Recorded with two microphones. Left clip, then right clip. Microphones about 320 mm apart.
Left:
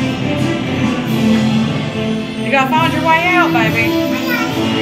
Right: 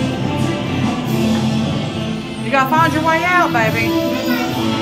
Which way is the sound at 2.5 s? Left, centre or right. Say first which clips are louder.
Even; centre.